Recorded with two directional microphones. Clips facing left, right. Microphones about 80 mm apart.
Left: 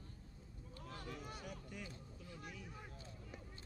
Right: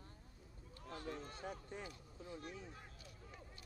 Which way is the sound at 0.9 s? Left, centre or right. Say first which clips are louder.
Right 4 dB; right.